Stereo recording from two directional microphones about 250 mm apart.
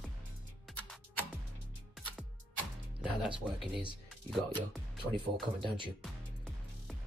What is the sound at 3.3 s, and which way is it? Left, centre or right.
Speech, centre.